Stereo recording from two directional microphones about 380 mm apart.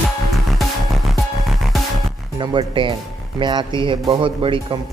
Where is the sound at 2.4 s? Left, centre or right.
Centre.